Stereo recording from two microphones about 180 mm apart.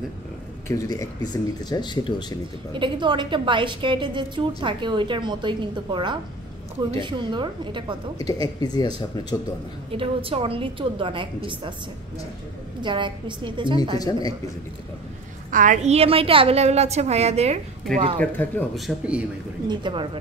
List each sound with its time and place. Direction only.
0.7 s speech: 20° left (ahead or behind)
2.7 s a woman's voice: 25° right (ahead or behind)
8.3 s speech: 20° left (ahead or behind)
9.8 s a woman's voice: 30° right (ahead or behind)
12.8 s a woman's voice: 25° right (ahead or behind)
13.9 s speech: 20° left (ahead or behind)
15.5 s a woman's voice: 45° right (ahead or behind)
18.2 s speech: 10° left (ahead or behind)
18.8 s a man's voice: 5° right (ahead or behind)
19.7 s a woman's voice: 25° right (ahead or behind)